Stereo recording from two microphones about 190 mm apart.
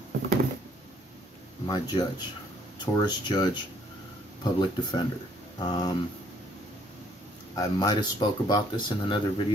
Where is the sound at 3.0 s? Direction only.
20° left (ahead or behind).